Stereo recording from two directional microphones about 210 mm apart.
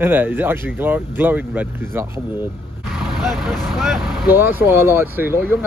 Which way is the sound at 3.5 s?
Centre (ahead or behind).